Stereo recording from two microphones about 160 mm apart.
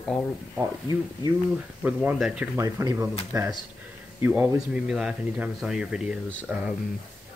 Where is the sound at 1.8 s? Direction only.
10° right (ahead or behind).